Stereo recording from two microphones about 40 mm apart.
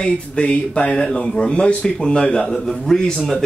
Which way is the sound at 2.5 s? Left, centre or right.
Centre.